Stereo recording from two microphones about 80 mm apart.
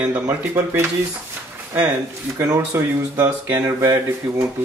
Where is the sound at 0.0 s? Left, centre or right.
Centre.